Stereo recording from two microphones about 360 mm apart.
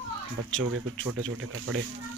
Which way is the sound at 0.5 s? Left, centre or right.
Right.